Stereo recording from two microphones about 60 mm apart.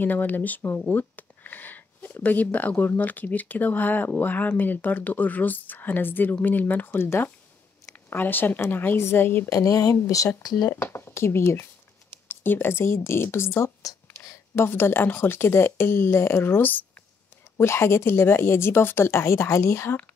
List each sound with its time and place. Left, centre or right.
0.0 s speech: left
0.8 s a sound: left
2.2 s speech: left
9.5 s speech: left
9.8 s speech: left
10.1 s speech: left
10.7 s a woman's voice: left
17.6 s speech: left